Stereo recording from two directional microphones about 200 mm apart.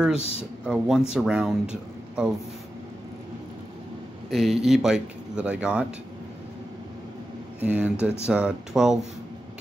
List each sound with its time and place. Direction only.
0.1 s a man's voice: 30° left (ahead or behind)
0.7 s speech: 5° right (ahead or behind)
4.3 s speech: centre (ahead or behind)
7.6 s speech: 10° right (ahead or behind)